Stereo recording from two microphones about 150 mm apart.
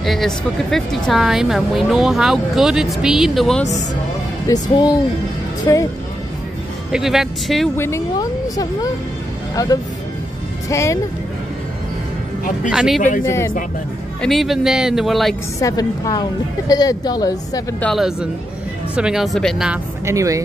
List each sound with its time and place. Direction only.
0.0 s speech: centre (ahead or behind)
4.5 s a woman's voice: 25° left (ahead or behind)
6.9 s speech: centre (ahead or behind)
7.7 s a woman's voice: 15° left (ahead or behind)
12.6 s speech: 5° right (ahead or behind)
13.2 s speech: 15° left (ahead or behind)
14.2 s speech: centre (ahead or behind)
15.6 s a woman's voice: 25° left (ahead or behind)
17.7 s speech: 5° left (ahead or behind)
20.1 s speech: 20° right (ahead or behind)